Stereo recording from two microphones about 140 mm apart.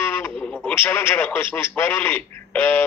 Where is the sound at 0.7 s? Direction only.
15° left (ahead or behind).